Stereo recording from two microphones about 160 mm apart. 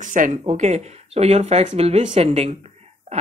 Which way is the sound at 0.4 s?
45° right (ahead or behind).